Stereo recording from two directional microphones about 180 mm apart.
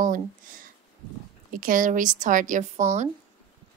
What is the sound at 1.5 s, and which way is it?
A woman's voice, 50° right (ahead or behind).